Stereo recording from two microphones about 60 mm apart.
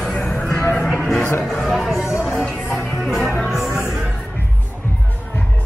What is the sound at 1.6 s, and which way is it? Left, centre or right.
Speech, centre.